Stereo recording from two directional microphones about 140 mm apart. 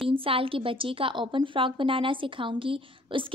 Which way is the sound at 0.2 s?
40° right (ahead or behind).